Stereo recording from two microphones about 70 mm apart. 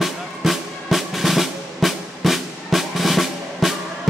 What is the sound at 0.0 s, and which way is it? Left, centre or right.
Music, centre.